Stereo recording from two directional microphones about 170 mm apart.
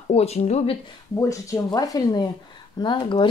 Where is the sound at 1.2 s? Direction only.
20° left (ahead or behind).